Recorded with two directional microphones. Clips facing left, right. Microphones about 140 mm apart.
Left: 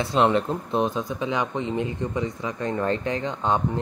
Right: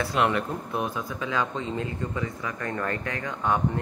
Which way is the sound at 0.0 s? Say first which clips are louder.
Left 4 dB; 25° left (ahead or behind).